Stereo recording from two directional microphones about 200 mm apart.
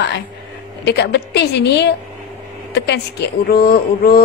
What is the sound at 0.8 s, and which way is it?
Speech, 55° left (ahead or behind).